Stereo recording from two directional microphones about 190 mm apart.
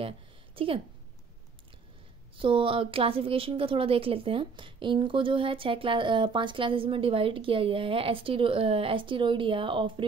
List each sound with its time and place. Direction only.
0.6 s a woman's voice: 30° right (ahead or behind)
2.3 s a woman's voice: 25° right (ahead or behind)